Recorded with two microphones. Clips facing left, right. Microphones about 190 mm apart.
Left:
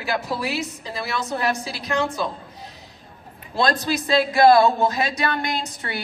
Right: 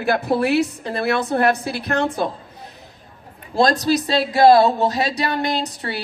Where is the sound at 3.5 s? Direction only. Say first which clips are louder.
Right 5 dB; 40° right (ahead or behind).